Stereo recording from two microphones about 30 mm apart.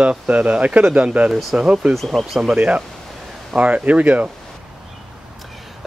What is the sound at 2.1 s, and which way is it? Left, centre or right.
Speech, centre.